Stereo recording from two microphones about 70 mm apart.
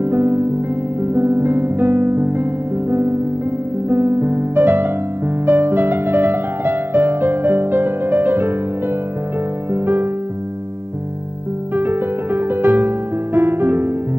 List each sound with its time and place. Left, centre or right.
0.0 s music: right
11.7 s music: right